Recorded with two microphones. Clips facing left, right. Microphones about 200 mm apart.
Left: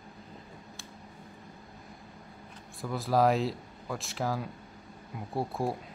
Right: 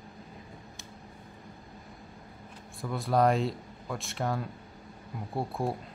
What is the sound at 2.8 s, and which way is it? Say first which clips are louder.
Speech: even; centre (ahead or behind).